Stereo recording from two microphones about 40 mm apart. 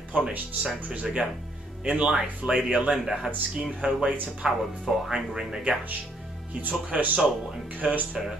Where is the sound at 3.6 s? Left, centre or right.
Centre.